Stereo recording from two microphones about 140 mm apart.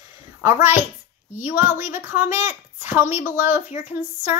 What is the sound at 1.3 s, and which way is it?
Speech, 15° right (ahead or behind).